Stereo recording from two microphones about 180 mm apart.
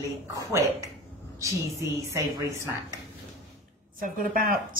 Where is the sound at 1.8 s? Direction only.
15° right (ahead or behind).